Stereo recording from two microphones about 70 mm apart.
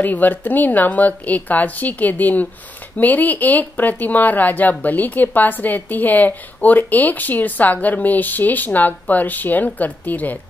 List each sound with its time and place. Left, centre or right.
0.0 s speech: left